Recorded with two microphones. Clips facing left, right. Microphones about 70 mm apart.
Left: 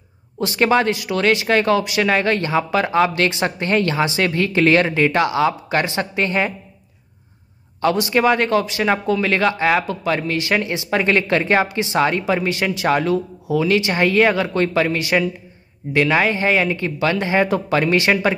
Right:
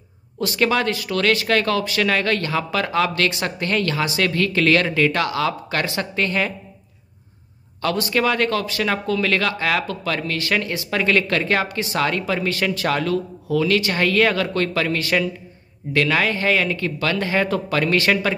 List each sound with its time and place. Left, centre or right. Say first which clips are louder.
0.4 s speech: left 3 dB; left
7.8 s speech: left 4 dB; left